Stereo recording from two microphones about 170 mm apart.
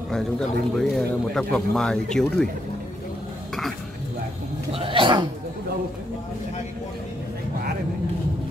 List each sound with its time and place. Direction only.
0.7 s speech: centre (ahead or behind)
4.7 s speech: 30° right (ahead or behind)